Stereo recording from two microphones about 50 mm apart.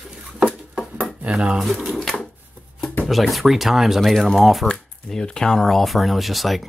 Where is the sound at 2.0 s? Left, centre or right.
Centre.